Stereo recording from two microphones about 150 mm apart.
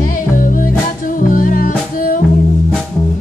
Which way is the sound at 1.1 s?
65° left (ahead or behind).